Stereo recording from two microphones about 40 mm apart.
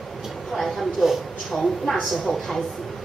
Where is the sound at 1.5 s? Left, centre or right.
Centre.